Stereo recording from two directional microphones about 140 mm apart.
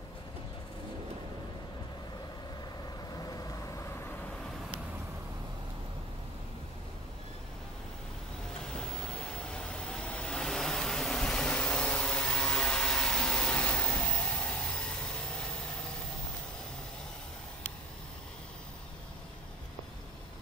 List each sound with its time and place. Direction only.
3.2 s vehicle: 25° left (ahead or behind)
9.3 s vehicle: 5° left (ahead or behind)